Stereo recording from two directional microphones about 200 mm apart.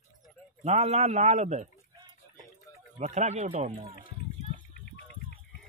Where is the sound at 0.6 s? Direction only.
35° right (ahead or behind).